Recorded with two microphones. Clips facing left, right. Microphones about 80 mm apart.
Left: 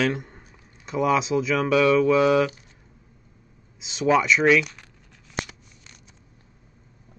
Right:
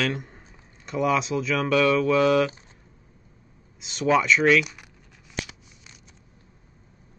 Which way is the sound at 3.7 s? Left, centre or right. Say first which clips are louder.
Left 1 dB; centre.